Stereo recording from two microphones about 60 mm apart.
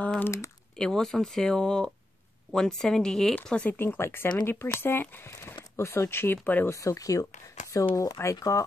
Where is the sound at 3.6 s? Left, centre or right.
Left.